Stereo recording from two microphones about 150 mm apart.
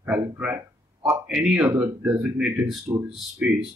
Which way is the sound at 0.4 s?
15° right (ahead or behind).